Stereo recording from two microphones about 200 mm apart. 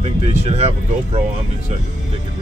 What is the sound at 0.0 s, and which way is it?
Speech, 35° right (ahead or behind).